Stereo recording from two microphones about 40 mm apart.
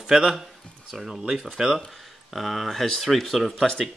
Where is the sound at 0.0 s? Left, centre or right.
Centre.